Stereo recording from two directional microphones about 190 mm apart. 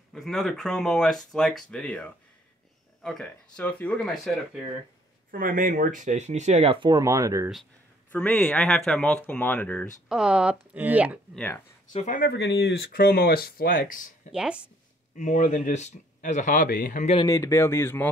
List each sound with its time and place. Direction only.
0.1 s speech: centre (ahead or behind)
5.3 s speech: 45° right (ahead or behind); by 7.4 s 15° right (ahead or behind)
8.1 s speech: 5° left (ahead or behind)
10.0 s speech: 5° right (ahead or behind)
11.3 s speech: 10° left (ahead or behind)
11.9 s speech: 35° left (ahead or behind)
12.2 s speech: 60° left (ahead or behind); by 14.1 s 45° left (ahead or behind)
14.3 s speech: 5° right (ahead or behind)
15.1 s speech: 40° left (ahead or behind)
17.3 s speech: 15° left (ahead or behind)